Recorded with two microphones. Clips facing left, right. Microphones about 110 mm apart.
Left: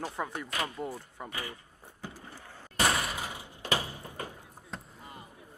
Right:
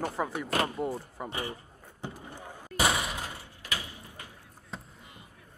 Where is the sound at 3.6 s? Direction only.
35° left (ahead or behind).